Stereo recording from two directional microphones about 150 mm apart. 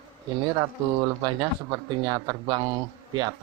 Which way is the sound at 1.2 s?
30° right (ahead or behind).